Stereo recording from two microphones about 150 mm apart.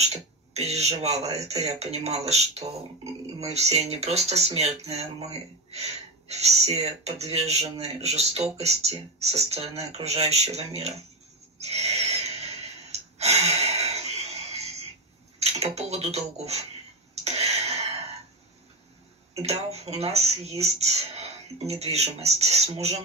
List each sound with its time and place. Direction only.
0.0 s a sound: 45° right (ahead or behind)
1.3 s speech: 45° right (ahead or behind)
11.6 s a sound: 45° right (ahead or behind)
13.2 s gasp: 45° right (ahead or behind)
15.3 s speech: 45° right (ahead or behind)
17.1 s throat clearing: 45° right (ahead or behind)
19.3 s speech: 45° right (ahead or behind)